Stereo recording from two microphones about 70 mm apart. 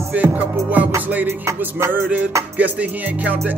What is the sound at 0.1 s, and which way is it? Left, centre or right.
Music, right.